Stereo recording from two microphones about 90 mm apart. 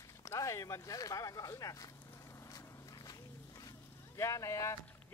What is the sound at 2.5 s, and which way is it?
Walk, 45° left (ahead or behind).